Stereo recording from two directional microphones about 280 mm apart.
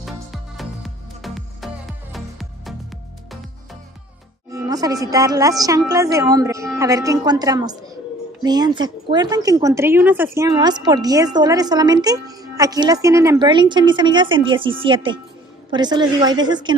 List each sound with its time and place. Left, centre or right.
0.0 s music: centre
4.5 s speech: centre